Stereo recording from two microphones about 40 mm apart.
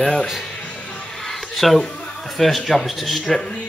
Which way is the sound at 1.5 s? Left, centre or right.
Centre.